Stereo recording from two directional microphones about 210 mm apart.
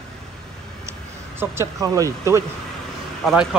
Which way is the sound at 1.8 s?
15° right (ahead or behind).